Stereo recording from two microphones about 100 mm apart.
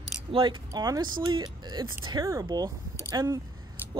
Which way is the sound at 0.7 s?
40° right (ahead or behind).